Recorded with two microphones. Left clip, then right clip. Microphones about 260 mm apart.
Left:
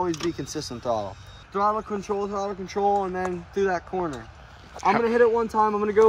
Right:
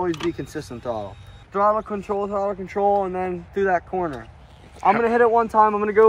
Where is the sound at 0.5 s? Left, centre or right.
Left.